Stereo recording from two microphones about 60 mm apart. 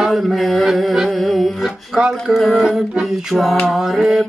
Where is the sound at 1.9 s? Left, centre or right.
Centre.